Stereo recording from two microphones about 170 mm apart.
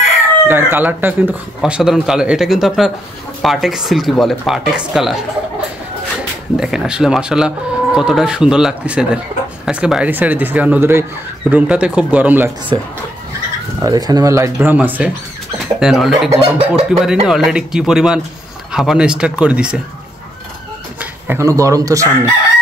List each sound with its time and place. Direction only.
0.5 s speech: 15° right (ahead or behind)
6.5 s speech: 5° right (ahead or behind)
12.7 s speech: 25° right (ahead or behind); by 16.3 s centre (ahead or behind)
16.5 s speech: 40° right (ahead or behind)
17.0 s speech: centre (ahead or behind)
21.0 s speech: 15° right (ahead or behind)